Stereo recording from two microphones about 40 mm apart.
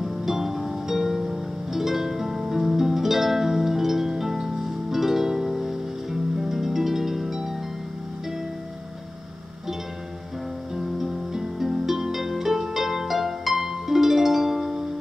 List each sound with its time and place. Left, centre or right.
0.0 s music: centre
6.4 s harp: centre
10.8 s music: centre